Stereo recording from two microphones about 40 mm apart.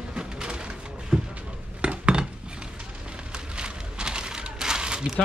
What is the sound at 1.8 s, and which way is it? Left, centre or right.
Dishes, right.